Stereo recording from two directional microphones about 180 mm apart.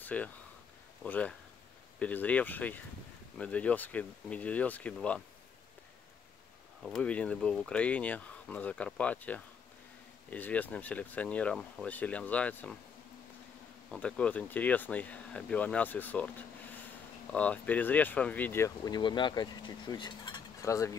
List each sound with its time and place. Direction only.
0.0 s speech: 10° left (ahead or behind)
6.8 s speech: 5° left (ahead or behind)
13.8 s speech: 5° left (ahead or behind)
18.9 s speech: 25° left (ahead or behind)